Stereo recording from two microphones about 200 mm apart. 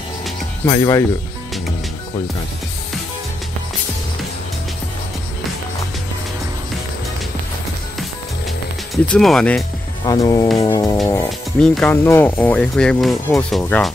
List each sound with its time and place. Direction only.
0.7 s speech: 15° left (ahead or behind)
8.9 s speech: 5° left (ahead or behind)
10.0 s speech: 20° left (ahead or behind)
10.6 s music: 20° left (ahead or behind)
11.6 s speech: 5° left (ahead or behind)